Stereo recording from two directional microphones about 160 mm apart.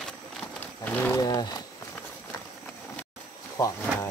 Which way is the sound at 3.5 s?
20° left (ahead or behind).